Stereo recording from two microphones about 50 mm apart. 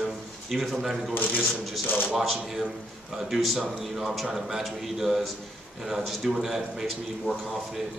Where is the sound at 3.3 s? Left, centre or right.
Centre.